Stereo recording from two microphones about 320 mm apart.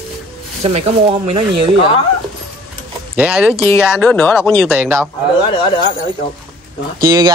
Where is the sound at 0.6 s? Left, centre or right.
Centre.